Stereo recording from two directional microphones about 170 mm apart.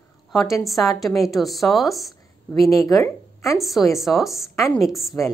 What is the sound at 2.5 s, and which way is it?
Speech, 20° left (ahead or behind).